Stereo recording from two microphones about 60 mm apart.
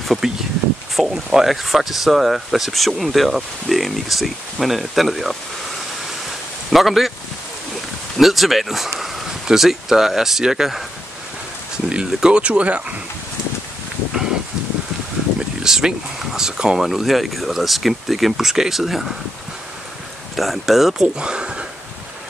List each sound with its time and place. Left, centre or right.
0.0 s speech: centre
6.7 s speech: centre
8.2 s speech: centre
11.9 s speech: centre
15.6 s speech: centre
20.3 s speech: centre
21.2 s speech: centre